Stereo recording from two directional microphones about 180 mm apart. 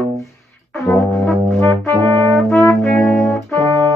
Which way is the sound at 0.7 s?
15° left (ahead or behind).